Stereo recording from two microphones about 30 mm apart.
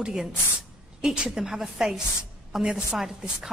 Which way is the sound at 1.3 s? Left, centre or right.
Centre.